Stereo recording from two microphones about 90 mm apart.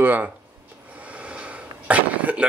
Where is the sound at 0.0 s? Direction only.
20° right (ahead or behind).